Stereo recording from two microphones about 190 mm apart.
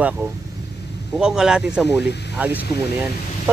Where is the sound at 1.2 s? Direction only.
5° right (ahead or behind).